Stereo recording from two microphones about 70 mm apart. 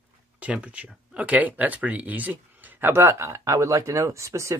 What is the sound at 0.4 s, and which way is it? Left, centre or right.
Speech, centre.